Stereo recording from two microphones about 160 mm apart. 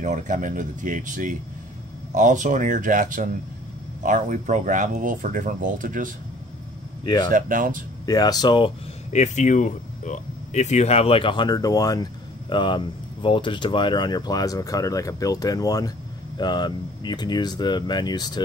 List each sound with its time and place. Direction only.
0.0 s speech: 50° right (ahead or behind)
7.2 s speech: 55° right (ahead or behind)
8.0 s speech: 25° left (ahead or behind)
9.1 s speech: 50° left (ahead or behind); by 18.4 s 25° left (ahead or behind)